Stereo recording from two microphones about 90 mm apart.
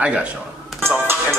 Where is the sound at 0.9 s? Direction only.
25° right (ahead or behind).